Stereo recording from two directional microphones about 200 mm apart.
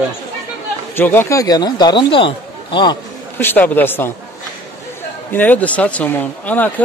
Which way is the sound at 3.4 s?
10° left (ahead or behind).